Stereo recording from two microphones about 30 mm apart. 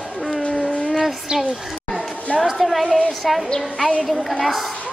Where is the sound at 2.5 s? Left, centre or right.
Centre.